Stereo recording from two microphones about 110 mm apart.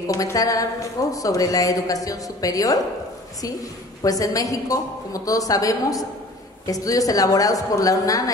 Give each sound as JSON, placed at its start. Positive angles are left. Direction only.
{"t": 0.1, "sound": "a woman's voice", "side_deg": 30}
{"t": 4.0, "sound": "a woman's voice", "side_deg": 30}